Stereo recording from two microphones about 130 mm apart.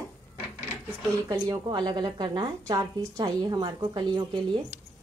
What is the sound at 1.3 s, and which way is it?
A woman's voice, 35° right (ahead or behind).